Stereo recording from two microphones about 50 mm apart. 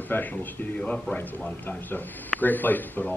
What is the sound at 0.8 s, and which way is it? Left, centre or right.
Speech, centre.